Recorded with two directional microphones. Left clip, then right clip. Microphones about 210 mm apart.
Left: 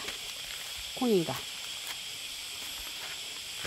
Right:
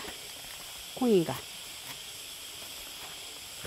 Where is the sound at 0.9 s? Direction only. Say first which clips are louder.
Right 2 dB; 15° right (ahead or behind).